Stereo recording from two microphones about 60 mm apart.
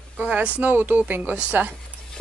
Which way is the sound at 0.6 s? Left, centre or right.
Right.